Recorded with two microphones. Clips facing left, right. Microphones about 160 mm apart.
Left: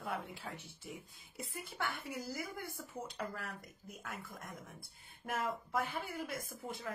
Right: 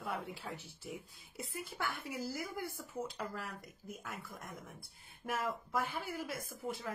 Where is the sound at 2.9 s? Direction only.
Centre (ahead or behind).